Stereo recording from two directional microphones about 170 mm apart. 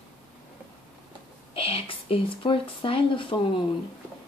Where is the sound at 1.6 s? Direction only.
35° left (ahead or behind).